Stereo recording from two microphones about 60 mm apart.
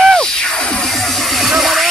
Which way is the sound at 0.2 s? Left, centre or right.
Centre.